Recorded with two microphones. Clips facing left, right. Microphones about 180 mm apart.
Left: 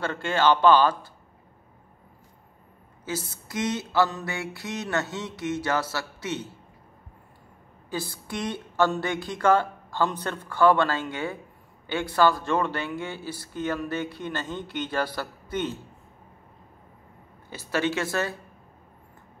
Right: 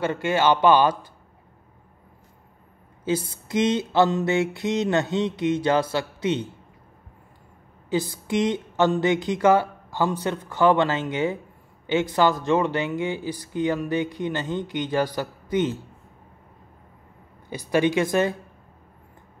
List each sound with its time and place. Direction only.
0.0 s speech: 10° right (ahead or behind)
3.4 s a sound: 20° right (ahead or behind)
7.9 s speech: 20° right (ahead or behind)
17.5 s speech: 15° right (ahead or behind)